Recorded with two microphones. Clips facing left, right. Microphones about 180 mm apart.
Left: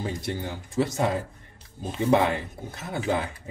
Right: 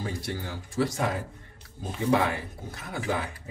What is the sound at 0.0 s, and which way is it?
Speech, 20° left (ahead or behind).